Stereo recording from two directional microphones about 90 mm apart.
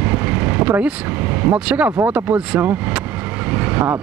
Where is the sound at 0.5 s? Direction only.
20° right (ahead or behind).